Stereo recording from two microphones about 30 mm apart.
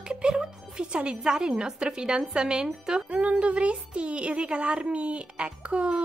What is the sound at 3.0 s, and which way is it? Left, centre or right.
A child's voice, right.